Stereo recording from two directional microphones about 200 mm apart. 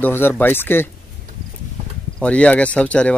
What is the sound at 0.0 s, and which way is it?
Speech, 10° left (ahead or behind).